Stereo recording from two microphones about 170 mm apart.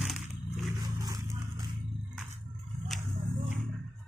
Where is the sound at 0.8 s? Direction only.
25° right (ahead or behind).